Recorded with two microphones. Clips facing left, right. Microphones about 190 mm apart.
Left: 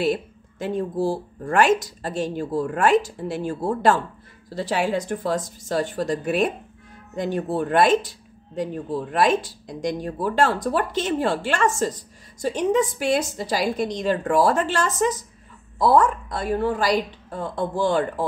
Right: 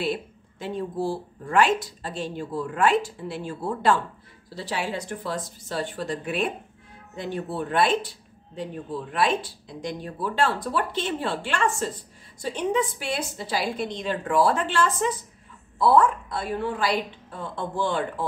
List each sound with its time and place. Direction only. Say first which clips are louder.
0.0 s a woman's voice: left 5 dB; 45° left (ahead or behind)